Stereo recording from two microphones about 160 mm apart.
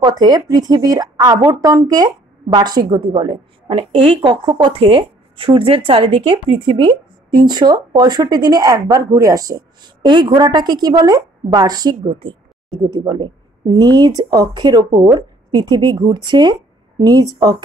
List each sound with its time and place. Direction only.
0.0 s a woman's voice: 25° right (ahead or behind)